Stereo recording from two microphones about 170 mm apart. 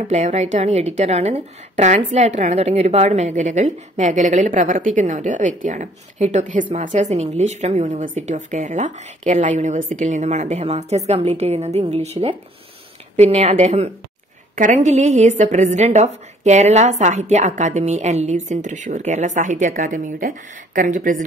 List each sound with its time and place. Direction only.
0.1 s a woman's voice: 40° right (ahead or behind)